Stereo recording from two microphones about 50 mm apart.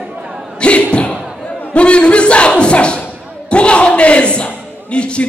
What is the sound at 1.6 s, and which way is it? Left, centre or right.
Speech, left.